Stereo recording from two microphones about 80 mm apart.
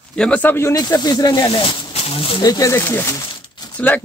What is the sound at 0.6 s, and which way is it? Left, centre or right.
Speech, left.